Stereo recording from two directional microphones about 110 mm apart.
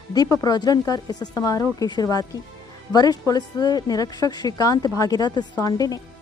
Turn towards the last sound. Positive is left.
turn(degrees=35)  # may be behind; listen again after turning